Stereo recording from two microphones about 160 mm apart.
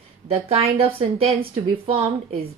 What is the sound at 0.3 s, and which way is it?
A woman's voice, 40° right (ahead or behind).